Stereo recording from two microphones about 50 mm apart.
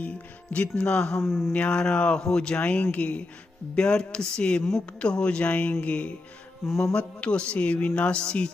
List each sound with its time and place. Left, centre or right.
0.0 s speech: left
2.6 s speech: left
3.7 s speech: centre